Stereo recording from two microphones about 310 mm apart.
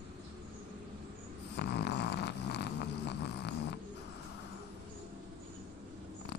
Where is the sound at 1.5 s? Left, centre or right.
Left.